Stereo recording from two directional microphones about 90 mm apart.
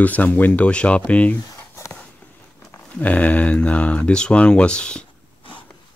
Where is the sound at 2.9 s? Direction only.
15° left (ahead or behind).